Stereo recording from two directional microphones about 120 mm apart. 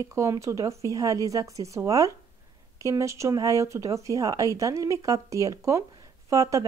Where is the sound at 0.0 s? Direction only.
25° right (ahead or behind).